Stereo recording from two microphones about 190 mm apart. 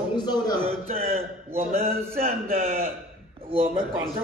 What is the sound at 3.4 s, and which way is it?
Speech, 30° right (ahead or behind).